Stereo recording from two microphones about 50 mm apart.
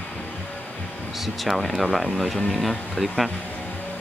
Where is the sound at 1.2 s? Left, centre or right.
Centre.